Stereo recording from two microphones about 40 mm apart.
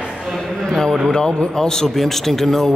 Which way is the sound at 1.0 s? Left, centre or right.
Centre.